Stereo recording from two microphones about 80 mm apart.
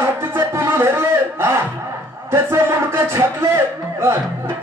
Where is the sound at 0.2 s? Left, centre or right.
Right.